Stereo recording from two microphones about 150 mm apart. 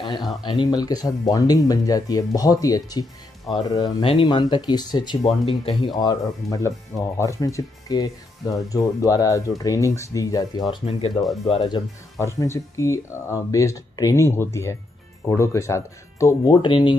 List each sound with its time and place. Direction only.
0.5 s speech: 30° left (ahead or behind)
10.7 s speech: 40° left (ahead or behind)
12.4 s speech: 20° left (ahead or behind)
16.6 s speech: 35° left (ahead or behind)